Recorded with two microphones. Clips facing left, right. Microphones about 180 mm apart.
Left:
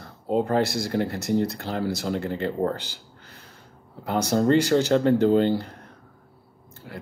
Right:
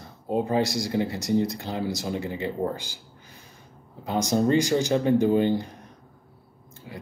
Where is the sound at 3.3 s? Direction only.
70° left (ahead or behind).